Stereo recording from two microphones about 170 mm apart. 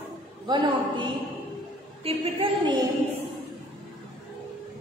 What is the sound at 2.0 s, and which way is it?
Speech, 35° right (ahead or behind).